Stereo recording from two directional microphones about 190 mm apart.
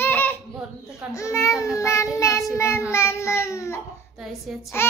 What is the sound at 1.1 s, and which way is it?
A child's voice, 15° left (ahead or behind).